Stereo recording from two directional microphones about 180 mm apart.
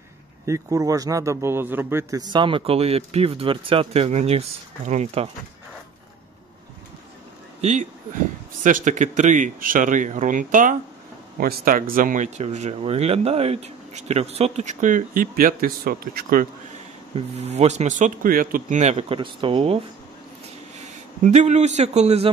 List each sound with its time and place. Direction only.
0.5 s a man's voice: 20° right (ahead or behind); by 5.3 s 35° right (ahead or behind)
7.6 s speech: 40° right (ahead or behind)
17.1 s speech: 35° right (ahead or behind)
21.2 s speech: 40° right (ahead or behind)